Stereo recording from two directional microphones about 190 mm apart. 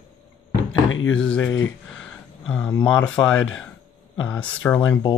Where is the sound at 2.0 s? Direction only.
5° left (ahead or behind).